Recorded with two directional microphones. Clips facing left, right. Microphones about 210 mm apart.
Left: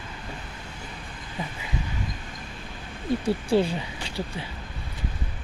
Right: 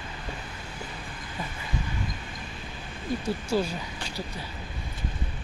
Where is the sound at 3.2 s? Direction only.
30° left (ahead or behind).